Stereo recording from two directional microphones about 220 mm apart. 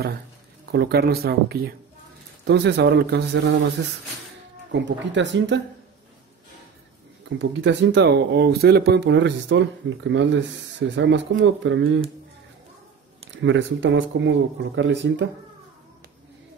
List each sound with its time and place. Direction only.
0.7 s speech: 45° right (ahead or behind)
4.7 s speech: 55° right (ahead or behind)
7.3 s speech: 55° right (ahead or behind)
13.4 s speech: 55° right (ahead or behind)